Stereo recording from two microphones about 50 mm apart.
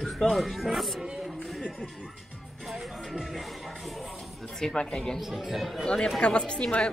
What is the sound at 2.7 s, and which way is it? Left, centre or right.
Music, centre.